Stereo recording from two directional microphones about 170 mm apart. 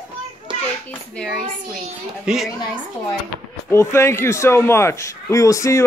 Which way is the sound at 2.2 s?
5° right (ahead or behind).